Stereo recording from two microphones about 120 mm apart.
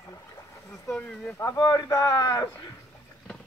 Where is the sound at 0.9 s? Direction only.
5° left (ahead or behind).